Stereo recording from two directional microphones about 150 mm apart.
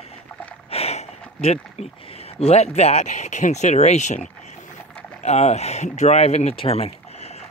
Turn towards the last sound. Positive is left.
turn(degrees=40)  # may be behind; listen again after turning